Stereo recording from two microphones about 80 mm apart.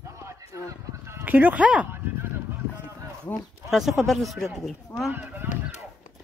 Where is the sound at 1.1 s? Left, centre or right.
Right.